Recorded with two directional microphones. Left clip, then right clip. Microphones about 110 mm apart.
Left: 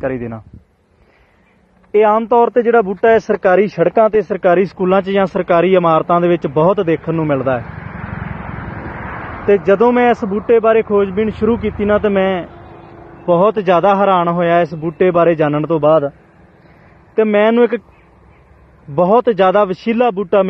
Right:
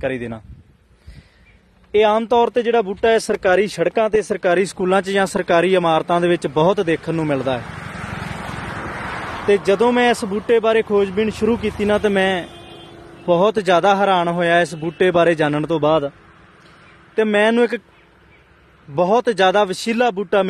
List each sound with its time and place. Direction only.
0.0 s a man's voice: 40° right (ahead or behind)
1.9 s speech: 35° right (ahead or behind)
7.6 s vehicle: 20° right (ahead or behind)
8.3 s vehicle: centre (ahead or behind)
9.1 s a sound: 10° left (ahead or behind)
9.7 s a man's voice: 25° right (ahead or behind)
17.1 s speech: 30° right (ahead or behind)
18.9 s speech: 25° right (ahead or behind)